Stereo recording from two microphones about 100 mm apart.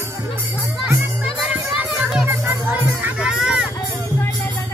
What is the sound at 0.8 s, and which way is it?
Music, 20° right (ahead or behind).